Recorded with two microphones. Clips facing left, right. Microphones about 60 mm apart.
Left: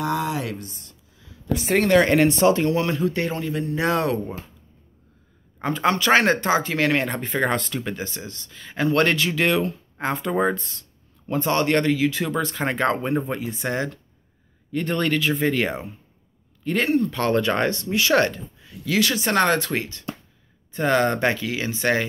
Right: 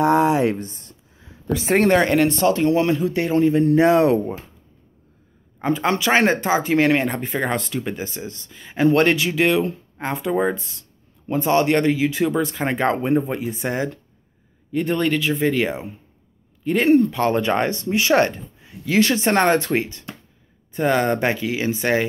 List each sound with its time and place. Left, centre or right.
0.0 s a sound: right
2.0 s speech: centre
2.6 s speech: centre
3.3 s speech: right
5.9 s speech: centre
20.7 s speech: centre